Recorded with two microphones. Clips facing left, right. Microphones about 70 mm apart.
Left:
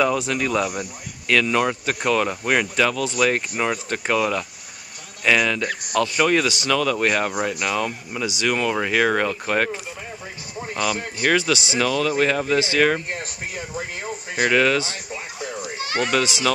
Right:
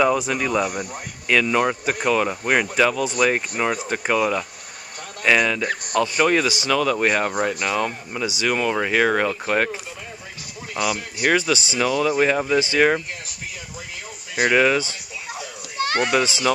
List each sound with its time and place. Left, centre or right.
0.0 s speech: centre
11.1 s speech: centre
13.7 s a sound: left
14.4 s speech: centre
16.0 s speech: centre